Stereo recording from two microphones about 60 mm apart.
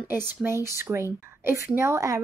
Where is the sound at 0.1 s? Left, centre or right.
Right.